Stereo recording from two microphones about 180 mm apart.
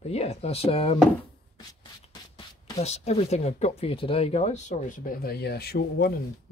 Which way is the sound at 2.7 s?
35° left (ahead or behind).